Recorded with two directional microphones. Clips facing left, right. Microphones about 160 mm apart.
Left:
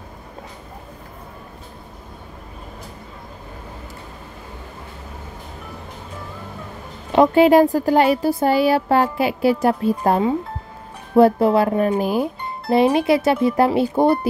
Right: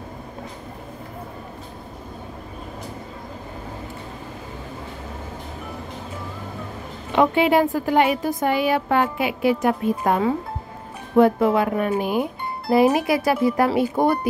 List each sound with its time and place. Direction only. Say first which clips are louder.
7.1 s a woman's voice: left 5 dB; 40° left (ahead or behind)
12.9 s speech: left 3 dB; 25° left (ahead or behind)